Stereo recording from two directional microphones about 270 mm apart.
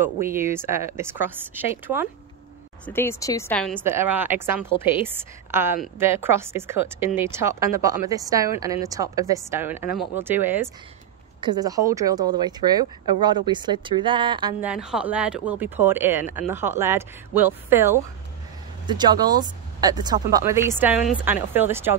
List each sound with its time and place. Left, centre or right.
0.0 s speech: centre
2.8 s speech: centre
3.8 s speech: centre
14.6 s speech: centre